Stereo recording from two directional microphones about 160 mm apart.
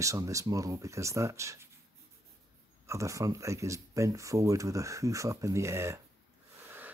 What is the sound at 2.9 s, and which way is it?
Speech, 20° right (ahead or behind).